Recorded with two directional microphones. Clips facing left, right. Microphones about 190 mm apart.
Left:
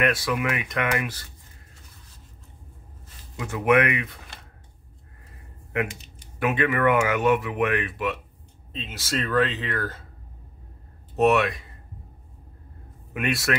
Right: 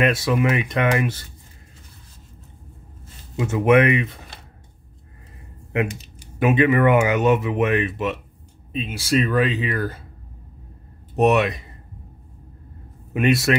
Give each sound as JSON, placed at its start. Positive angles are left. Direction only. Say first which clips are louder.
{"t": 0.0, "sound": "speech", "louder": "right 5 dB", "side_deg": -25}
{"t": 3.3, "sound": "speech", "louder": "right 5 dB", "side_deg": -25}
{"t": 6.4, "sound": "speech", "louder": "right 5 dB", "side_deg": -20}
{"t": 8.7, "sound": "speech", "louder": "right 8 dB", "side_deg": -10}
{"t": 11.1, "sound": "speech", "louder": "right 2 dB", "side_deg": -20}
{"t": 13.1, "sound": "speech", "louder": "right 7 dB", "side_deg": -25}